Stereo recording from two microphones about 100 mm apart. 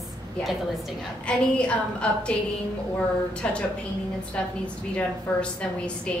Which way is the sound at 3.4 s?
10° left (ahead or behind).